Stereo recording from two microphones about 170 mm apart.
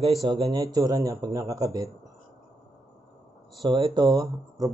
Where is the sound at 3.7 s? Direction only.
25° right (ahead or behind).